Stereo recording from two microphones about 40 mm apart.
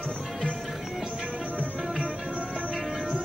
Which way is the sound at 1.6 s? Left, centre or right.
Right.